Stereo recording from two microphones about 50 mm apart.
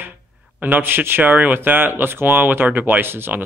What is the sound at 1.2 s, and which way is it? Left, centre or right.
A man's voice, right.